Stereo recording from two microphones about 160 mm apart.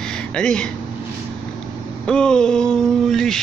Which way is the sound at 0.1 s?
5° left (ahead or behind).